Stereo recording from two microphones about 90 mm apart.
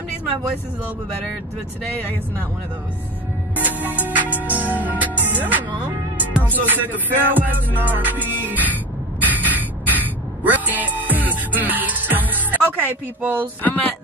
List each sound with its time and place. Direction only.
3.5 s music: 20° right (ahead or behind)
12.4 s speech: 20° right (ahead or behind)
13.6 s speech: 15° left (ahead or behind)